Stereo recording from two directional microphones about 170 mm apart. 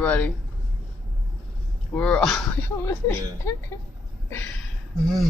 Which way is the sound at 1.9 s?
5° left (ahead or behind).